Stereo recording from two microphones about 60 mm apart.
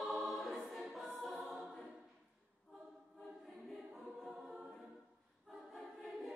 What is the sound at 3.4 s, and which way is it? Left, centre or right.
Choir, centre.